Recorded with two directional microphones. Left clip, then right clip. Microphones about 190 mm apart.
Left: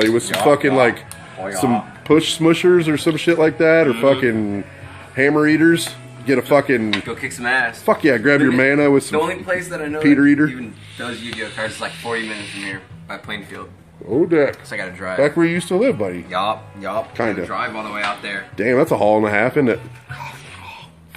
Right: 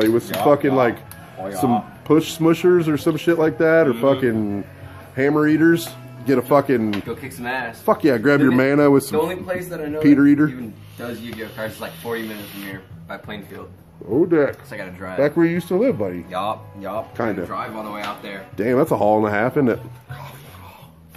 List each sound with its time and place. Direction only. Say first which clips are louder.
0.0 s speech: left 2 dB; centre (ahead or behind)
12.2 s speech: left 5 dB; 25° right (ahead or behind)
14.1 s speech: left 2 dB; 5° left (ahead or behind)
17.5 s speech: left 4 dB; 10° right (ahead or behind)